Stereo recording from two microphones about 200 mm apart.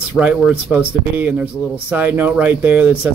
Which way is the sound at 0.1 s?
5° right (ahead or behind).